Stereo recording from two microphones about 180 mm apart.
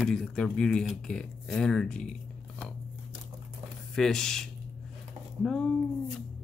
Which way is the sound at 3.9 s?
5° left (ahead or behind).